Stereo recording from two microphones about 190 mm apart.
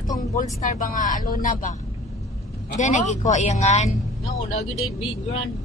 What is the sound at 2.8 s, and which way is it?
A man's voice, 40° left (ahead or behind).